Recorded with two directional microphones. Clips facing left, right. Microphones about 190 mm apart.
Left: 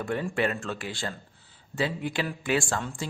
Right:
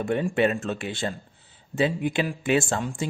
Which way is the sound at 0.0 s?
20° right (ahead or behind).